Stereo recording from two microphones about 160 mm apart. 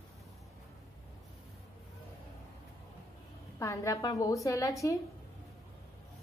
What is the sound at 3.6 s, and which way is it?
A woman's voice, 20° left (ahead or behind).